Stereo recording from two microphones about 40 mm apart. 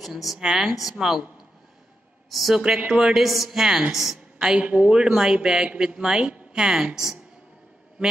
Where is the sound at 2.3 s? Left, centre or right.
Centre.